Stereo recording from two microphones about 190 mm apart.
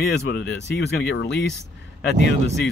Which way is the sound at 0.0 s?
60° left (ahead or behind).